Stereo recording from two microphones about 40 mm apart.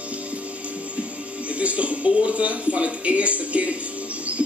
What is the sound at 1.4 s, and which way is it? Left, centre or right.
Speech, right.